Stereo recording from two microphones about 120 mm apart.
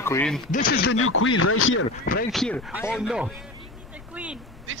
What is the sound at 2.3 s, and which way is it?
Speech, 5° left (ahead or behind).